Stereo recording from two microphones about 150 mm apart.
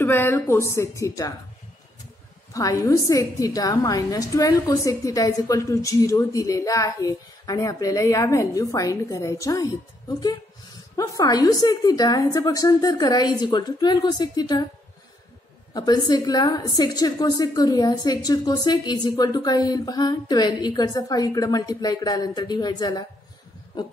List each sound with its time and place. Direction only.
0.0 s a woman's voice: 15° left (ahead or behind)
2.5 s a woman's voice: 20° left (ahead or behind)
15.7 s a woman's voice: 25° left (ahead or behind)